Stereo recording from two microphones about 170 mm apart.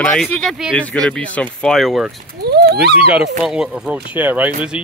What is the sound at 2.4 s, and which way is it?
Speech, 70° right (ahead or behind).